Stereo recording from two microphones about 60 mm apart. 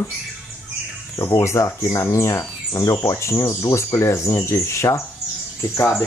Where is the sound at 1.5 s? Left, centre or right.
Left.